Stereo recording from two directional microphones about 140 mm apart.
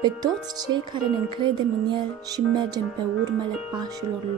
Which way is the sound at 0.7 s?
35° right (ahead or behind).